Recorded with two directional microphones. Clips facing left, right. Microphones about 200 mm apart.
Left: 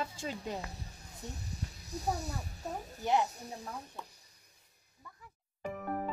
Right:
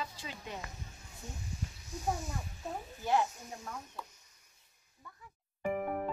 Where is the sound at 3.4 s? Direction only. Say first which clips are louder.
Left 2 dB; 35° left (ahead or behind).